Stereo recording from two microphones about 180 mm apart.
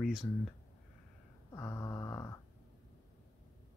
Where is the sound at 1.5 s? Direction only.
15° left (ahead or behind).